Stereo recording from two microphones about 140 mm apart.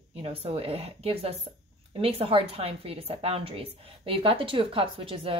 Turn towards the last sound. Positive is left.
turn(degrees=-40)  # may be behind; listen again after turning